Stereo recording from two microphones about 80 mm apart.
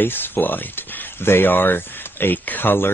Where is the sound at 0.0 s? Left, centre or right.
Left.